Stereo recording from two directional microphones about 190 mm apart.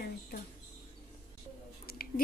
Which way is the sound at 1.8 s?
50° left (ahead or behind).